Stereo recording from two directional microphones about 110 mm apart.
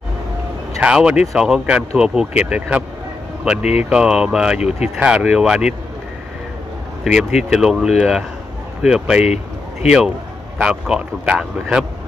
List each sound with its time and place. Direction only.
0.7 s speech: 10° right (ahead or behind)
3.9 s speech: 5° right (ahead or behind)
4.6 s speech: 80° left
4.9 s speech: 10° right (ahead or behind)
7.1 s speech: 5° right (ahead or behind)
9.2 s a sound: 85° left
9.8 s speech: 10° right (ahead or behind)